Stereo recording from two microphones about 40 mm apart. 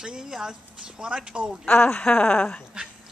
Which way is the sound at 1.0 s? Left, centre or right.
Right.